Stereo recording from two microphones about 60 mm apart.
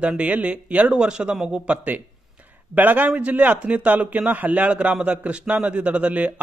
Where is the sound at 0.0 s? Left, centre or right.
Right.